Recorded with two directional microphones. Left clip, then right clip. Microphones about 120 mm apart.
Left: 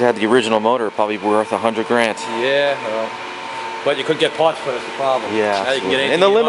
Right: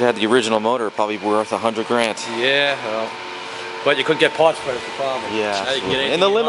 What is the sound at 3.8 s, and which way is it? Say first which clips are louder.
Speech: right 1 dB; 20° right (ahead or behind).